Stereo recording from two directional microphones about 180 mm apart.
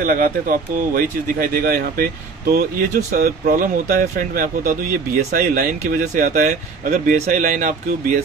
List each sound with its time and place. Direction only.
0.0 s speech: 50° right (ahead or behind)